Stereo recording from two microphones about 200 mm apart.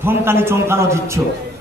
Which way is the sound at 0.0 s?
10° right (ahead or behind).